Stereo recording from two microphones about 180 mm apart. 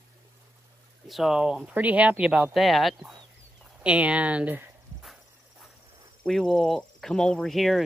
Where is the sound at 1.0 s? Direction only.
Centre (ahead or behind).